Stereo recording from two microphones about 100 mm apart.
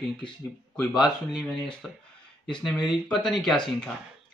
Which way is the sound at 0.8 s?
Centre (ahead or behind).